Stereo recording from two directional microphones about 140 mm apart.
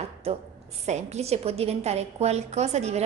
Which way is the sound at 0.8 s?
55° right (ahead or behind).